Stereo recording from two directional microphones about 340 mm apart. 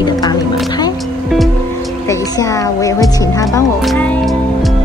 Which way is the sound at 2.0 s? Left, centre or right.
Centre.